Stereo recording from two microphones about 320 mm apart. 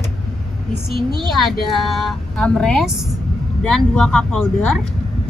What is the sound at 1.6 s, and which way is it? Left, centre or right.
Speech, centre.